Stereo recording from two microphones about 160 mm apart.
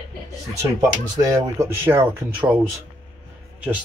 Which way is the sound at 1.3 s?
20° right (ahead or behind).